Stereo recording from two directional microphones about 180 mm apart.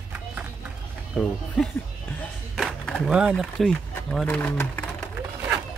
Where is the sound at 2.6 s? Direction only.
Centre (ahead or behind).